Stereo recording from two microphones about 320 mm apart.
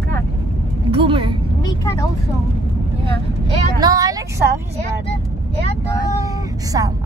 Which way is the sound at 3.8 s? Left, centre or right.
Centre.